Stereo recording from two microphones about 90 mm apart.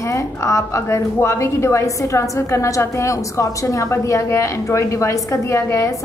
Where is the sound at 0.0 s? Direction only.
35° left (ahead or behind).